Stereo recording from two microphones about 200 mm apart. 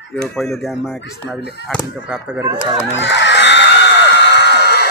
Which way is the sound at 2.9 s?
65° left (ahead or behind).